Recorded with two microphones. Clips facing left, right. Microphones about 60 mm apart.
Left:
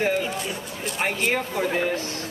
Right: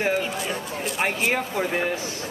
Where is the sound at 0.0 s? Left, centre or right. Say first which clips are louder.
Even; centre.